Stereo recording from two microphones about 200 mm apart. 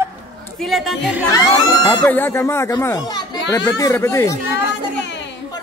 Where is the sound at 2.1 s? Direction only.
10° left (ahead or behind).